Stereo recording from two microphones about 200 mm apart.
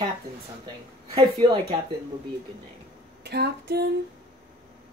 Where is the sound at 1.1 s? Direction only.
30° right (ahead or behind).